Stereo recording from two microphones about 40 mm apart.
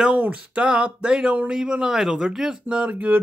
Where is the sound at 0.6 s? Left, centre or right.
Right.